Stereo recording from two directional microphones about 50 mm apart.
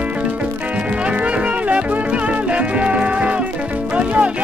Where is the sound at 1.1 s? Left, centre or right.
Right.